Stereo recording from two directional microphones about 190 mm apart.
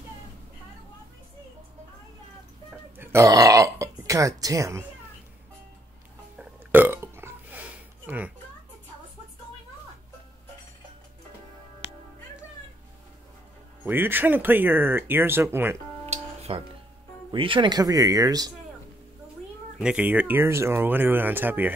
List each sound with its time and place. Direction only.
2.7 s burping: 10° right (ahead or behind)
6.3 s burping: 10° right (ahead or behind)
8.1 s a sound: 10° right (ahead or behind)
13.8 s speech: 10° right (ahead or behind)
16.1 s music: 35° right (ahead or behind)
17.3 s speech: 25° right (ahead or behind)
19.8 s speech: 5° right (ahead or behind)